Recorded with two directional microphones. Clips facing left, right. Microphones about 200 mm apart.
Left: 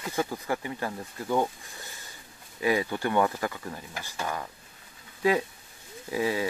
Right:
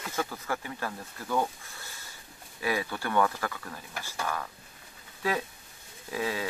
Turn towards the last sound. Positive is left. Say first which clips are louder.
# left 4 dB
turn(degrees=15)  # may be behind; listen again after turning